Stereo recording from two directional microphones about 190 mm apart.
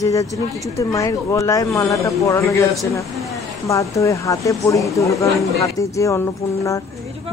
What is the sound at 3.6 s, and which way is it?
Speech, 15° left (ahead or behind).